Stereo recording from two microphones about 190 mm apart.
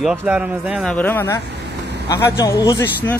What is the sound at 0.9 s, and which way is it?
Speech, 10° left (ahead or behind).